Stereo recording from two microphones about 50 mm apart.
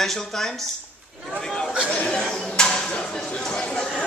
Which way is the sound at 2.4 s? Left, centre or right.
Centre.